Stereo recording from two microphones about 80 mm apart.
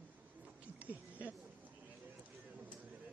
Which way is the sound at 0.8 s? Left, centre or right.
Centre.